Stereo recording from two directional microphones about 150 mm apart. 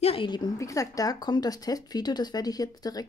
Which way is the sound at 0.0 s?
35° left (ahead or behind).